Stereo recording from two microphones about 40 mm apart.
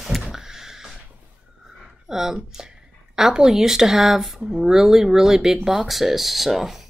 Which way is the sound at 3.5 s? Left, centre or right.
Centre.